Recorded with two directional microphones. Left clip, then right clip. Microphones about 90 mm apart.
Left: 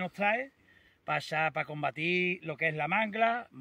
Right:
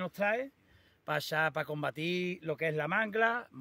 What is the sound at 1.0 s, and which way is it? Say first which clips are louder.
Speech: left 1 dB; 40° right (ahead or behind).